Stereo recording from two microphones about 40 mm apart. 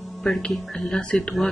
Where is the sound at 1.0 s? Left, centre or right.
Left.